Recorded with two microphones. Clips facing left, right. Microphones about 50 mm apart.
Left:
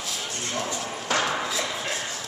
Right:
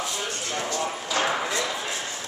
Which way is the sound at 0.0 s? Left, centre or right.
Centre.